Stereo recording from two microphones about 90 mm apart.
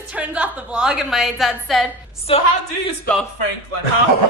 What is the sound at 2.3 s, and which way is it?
Speech, 80° left.